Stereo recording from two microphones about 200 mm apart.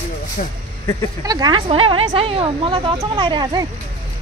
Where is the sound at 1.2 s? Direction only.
20° right (ahead or behind).